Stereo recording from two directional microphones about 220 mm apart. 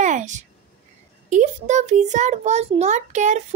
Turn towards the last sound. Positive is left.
turn(degrees=-35)  # may be behind; listen again after turning